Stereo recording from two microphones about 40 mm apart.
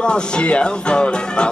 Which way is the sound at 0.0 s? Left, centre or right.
Left.